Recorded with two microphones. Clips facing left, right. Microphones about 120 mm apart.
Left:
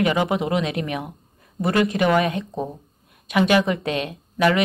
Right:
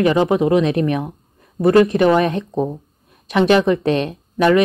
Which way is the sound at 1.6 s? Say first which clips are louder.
Right 7 dB; 35° right (ahead or behind).